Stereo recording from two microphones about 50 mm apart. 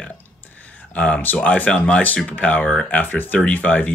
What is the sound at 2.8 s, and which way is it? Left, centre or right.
Speech, left.